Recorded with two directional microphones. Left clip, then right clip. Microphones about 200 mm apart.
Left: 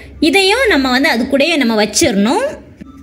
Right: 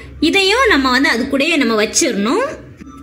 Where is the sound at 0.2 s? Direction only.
20° left (ahead or behind).